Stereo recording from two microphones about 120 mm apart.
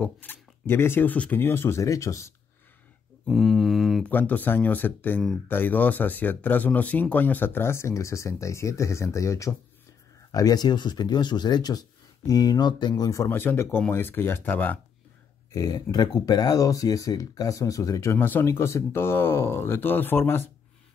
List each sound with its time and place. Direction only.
0.0 s speech: 15° left (ahead or behind)
3.3 s mantra: centre (ahead or behind)
4.0 s speech: 15° left (ahead or behind)
15.5 s speech: 30° left (ahead or behind)
18.1 s speech: 20° left (ahead or behind)